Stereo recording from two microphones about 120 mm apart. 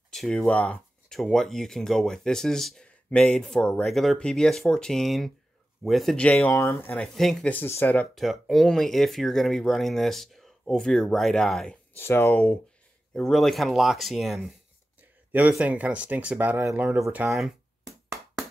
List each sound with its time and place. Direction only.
0.1 s a sound: 5° left (ahead or behind)
0.4 s speech: 10° left (ahead or behind)
6.3 s speech: 25° left (ahead or behind)
7.2 s speech: 5° left (ahead or behind)
8.1 s speech: centre (ahead or behind)
12.0 s speech: 20° left (ahead or behind)
13.1 s speech: 5° left (ahead or behind)
15.3 s speech: 15° right (ahead or behind)